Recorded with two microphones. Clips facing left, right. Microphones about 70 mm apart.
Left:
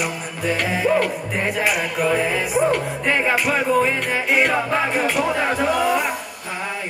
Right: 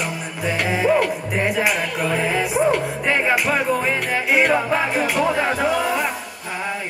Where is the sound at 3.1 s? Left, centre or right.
Centre.